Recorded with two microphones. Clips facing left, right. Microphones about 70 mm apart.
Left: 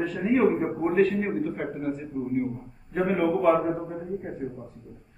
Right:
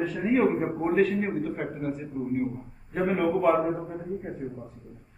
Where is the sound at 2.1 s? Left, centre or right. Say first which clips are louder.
Left 1 dB; centre.